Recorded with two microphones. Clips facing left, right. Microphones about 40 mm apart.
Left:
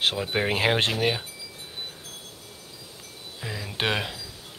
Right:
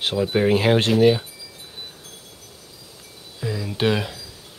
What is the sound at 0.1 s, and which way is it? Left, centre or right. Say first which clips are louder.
Speech: right 7 dB; centre.